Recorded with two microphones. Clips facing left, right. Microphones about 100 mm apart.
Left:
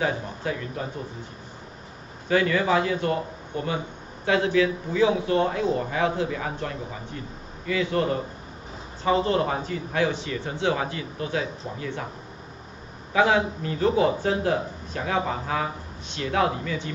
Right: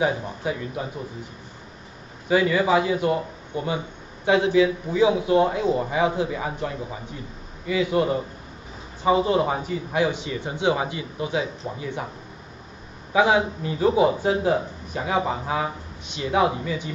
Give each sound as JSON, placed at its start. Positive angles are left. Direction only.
{"t": 0.0, "sound": "a man's voice", "side_deg": -15}
{"t": 2.2, "sound": "a man's voice", "side_deg": -10}
{"t": 13.1, "sound": "a man's voice", "side_deg": -15}